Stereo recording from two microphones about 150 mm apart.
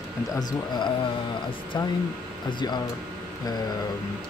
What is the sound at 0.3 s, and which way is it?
Speech, 25° left (ahead or behind).